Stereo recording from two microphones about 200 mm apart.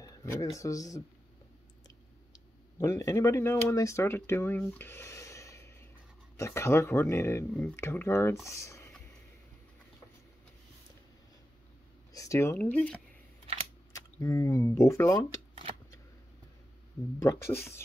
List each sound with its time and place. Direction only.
0.0 s speech: 15° left (ahead or behind)
2.3 s speech: 15° left (ahead or behind)
8.5 s a sound: 15° left (ahead or behind)
12.1 s speech: 15° left (ahead or behind)
17.2 s speech: 15° left (ahead or behind)